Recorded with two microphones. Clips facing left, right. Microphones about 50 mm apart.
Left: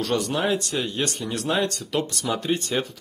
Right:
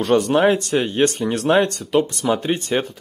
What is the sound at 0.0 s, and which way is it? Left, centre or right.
Speech, right.